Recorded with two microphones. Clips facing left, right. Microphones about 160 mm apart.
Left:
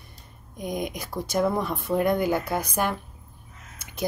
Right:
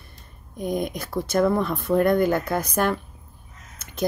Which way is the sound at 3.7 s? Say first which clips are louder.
Right 3 dB; 10° left (ahead or behind).